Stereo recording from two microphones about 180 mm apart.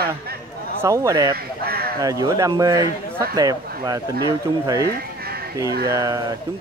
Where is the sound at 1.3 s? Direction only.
60° right (ahead or behind).